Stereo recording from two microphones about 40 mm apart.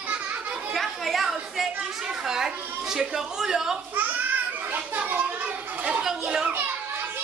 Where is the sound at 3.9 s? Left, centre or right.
Right.